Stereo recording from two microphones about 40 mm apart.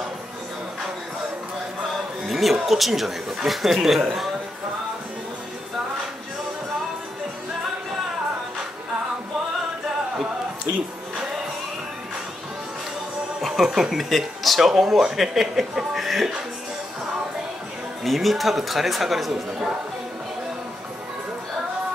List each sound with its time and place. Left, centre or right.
2.2 s a sound: centre
2.5 s speech: centre
13.7 s speech: centre
13.9 s speech: centre
18.0 s speech: centre